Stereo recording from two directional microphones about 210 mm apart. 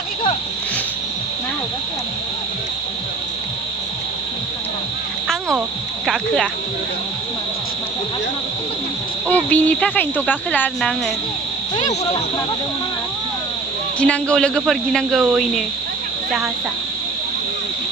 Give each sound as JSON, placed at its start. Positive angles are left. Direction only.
{"t": 6.0, "sound": "a man's voice", "side_deg": 0}
{"t": 9.3, "sound": "speech", "side_deg": 5}
{"t": 11.7, "sound": "speech", "side_deg": 30}
{"t": 13.9, "sound": "a man's voice", "side_deg": 5}